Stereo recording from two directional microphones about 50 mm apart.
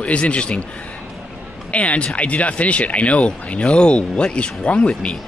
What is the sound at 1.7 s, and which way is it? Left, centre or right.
Speech, left.